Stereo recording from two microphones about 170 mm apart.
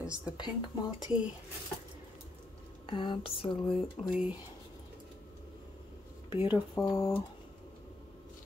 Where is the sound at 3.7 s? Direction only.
5° right (ahead or behind).